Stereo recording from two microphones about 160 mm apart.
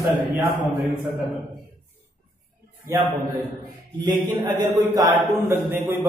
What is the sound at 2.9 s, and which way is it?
Speech, 20° right (ahead or behind).